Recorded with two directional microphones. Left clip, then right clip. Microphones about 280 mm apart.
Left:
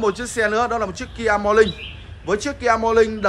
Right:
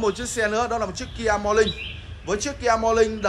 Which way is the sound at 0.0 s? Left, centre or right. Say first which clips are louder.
Left 3 dB; centre.